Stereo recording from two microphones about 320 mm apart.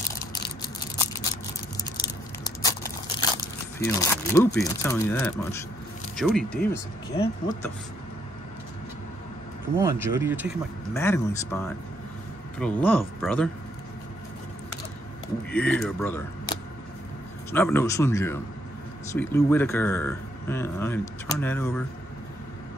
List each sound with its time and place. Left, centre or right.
2.6 s a sound: centre
3.8 s speech: centre
7.1 s speech: centre
9.8 s speech: centre
10.9 s speech: centre
15.5 s speech: centre